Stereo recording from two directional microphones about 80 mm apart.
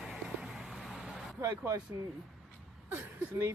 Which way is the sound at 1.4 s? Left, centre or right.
Right.